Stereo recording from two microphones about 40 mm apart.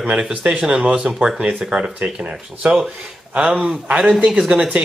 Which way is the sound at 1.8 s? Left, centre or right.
Right.